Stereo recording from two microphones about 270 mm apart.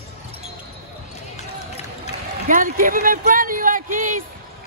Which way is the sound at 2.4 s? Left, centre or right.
Right.